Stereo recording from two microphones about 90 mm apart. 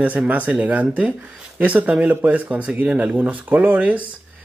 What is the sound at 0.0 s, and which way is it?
Speech, 15° right (ahead or behind).